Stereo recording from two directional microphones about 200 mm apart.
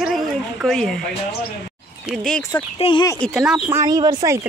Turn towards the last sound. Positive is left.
turn(degrees=-20)  # may be behind; listen again after turning